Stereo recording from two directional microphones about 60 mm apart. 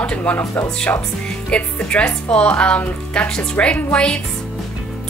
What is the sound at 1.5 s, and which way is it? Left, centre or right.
Speech, centre.